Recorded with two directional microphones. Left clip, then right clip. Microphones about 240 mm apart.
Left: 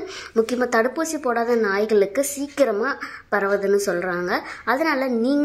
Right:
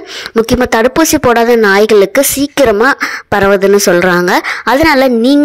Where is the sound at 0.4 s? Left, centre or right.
Right.